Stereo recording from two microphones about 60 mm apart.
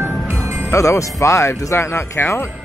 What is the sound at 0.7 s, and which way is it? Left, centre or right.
Speech, left.